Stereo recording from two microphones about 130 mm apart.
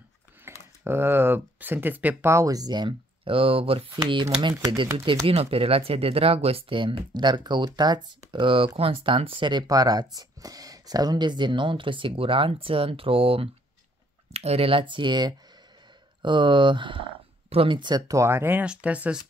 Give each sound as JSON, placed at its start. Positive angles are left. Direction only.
{"t": 0.5, "sound": "a sound", "side_deg": -20}
{"t": 0.8, "sound": "speech", "side_deg": -20}
{"t": 3.9, "sound": "speech", "side_deg": -30}
{"t": 5.2, "sound": "speech", "side_deg": -50}